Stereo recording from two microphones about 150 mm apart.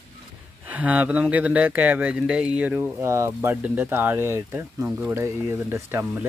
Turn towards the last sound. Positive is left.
turn(degrees=-15)  # may be behind; listen again after turning